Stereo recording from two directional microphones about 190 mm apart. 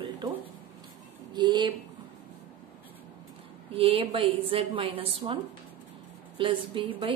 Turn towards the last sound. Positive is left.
turn(degrees=-30)  # may be behind; listen again after turning